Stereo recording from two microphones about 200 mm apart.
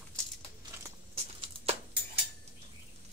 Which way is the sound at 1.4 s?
30° right (ahead or behind).